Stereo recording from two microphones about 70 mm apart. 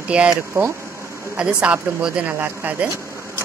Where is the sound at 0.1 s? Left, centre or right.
Centre.